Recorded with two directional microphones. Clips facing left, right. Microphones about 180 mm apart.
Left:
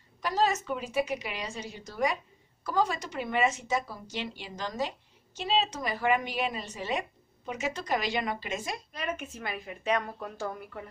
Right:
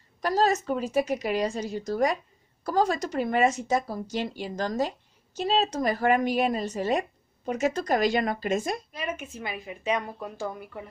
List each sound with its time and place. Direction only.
0.2 s a woman's voice: 40° right (ahead or behind)
8.9 s a woman's voice: 5° right (ahead or behind)